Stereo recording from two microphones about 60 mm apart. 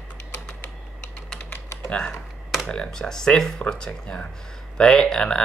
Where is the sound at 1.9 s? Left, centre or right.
Centre.